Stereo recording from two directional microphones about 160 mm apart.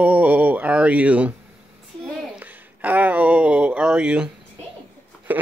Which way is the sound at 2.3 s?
10° right (ahead or behind).